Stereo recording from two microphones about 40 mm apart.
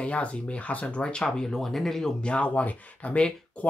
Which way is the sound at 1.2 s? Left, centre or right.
Centre.